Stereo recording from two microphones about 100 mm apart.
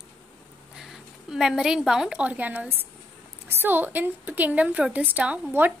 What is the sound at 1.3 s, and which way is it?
A woman's voice, 5° right (ahead or behind).